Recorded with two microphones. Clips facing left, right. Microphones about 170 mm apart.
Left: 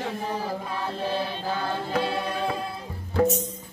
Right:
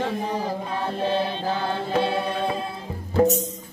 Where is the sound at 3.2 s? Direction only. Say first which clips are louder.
Right 3 dB; 40° right (ahead or behind).